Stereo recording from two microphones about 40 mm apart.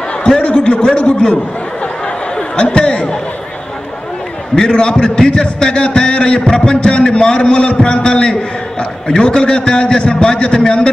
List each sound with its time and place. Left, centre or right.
0.4 s a man's voice: left
4.6 s a man's voice: centre